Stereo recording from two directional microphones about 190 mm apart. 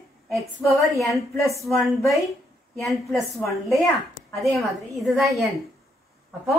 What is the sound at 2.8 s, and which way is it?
Speech, centre (ahead or behind).